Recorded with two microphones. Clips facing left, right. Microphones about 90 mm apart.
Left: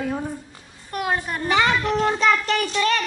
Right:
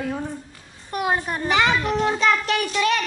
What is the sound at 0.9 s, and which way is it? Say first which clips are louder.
Speech: right 1 dB; 20° right (ahead or behind).